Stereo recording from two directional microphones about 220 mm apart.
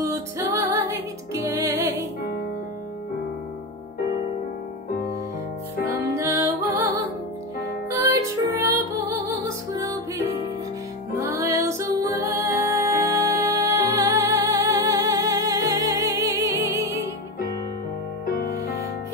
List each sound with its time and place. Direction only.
0.0 s music: 15° right (ahead or behind)
6.1 s music: 10° right (ahead or behind)
7.9 s music: 15° right (ahead or behind)
11.1 s music: 15° right (ahead or behind)
18.2 s music: 45° left (ahead or behind)